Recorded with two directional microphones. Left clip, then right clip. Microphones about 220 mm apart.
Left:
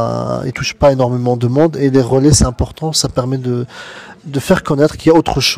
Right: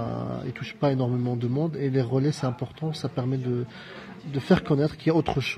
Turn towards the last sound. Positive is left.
turn(degrees=45)  # may be behind; listen again after turning